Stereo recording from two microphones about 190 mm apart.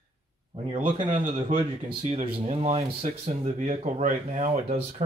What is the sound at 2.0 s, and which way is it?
Speech, 35° right (ahead or behind).